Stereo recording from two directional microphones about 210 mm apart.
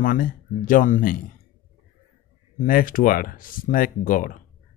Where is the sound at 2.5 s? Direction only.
40° left (ahead or behind).